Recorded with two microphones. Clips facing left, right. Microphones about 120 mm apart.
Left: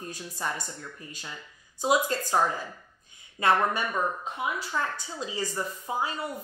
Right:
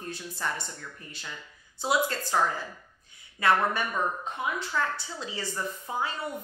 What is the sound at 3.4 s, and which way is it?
A woman's voice, 20° left (ahead or behind).